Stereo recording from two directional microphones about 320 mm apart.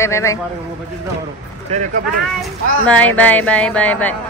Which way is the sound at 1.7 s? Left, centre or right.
Right.